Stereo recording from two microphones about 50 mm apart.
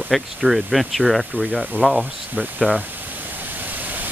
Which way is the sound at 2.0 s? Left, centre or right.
Right.